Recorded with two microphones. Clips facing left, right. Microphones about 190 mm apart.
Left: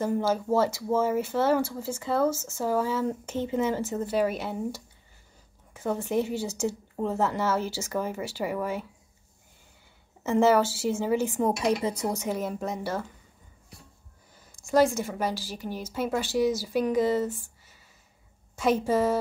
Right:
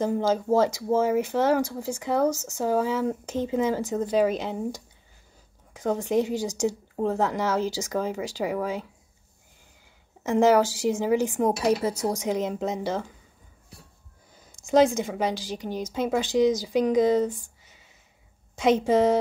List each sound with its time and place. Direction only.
0.0 s speech: 15° right (ahead or behind)
10.2 s a woman's voice: 15° right (ahead or behind)
14.5 s a woman's voice: 20° right (ahead or behind)